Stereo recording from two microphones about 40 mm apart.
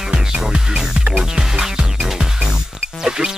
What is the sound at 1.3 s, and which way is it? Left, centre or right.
Music, centre.